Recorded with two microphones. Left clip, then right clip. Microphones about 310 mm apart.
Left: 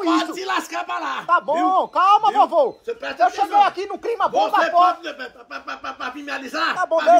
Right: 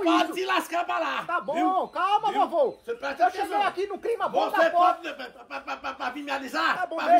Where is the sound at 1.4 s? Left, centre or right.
Left.